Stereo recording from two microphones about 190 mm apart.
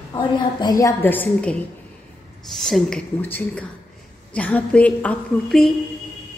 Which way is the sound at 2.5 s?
Centre (ahead or behind).